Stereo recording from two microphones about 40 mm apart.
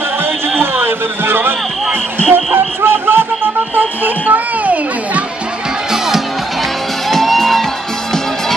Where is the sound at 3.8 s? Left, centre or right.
Right.